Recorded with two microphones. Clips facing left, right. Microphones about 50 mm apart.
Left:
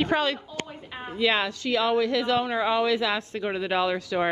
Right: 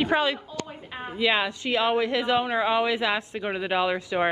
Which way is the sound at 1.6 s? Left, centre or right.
Right.